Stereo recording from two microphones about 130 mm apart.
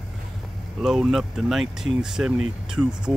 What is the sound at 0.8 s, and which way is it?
Speech, centre (ahead or behind).